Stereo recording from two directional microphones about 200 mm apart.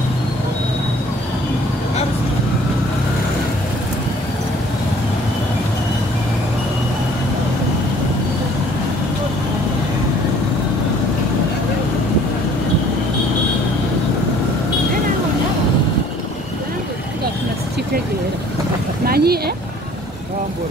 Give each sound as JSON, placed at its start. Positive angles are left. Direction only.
{"t": 19.0, "sound": "vehicle", "side_deg": -50}